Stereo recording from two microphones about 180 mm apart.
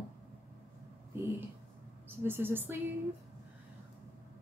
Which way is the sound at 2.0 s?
10° right (ahead or behind).